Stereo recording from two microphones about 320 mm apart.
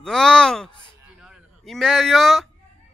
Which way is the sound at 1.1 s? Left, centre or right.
Centre.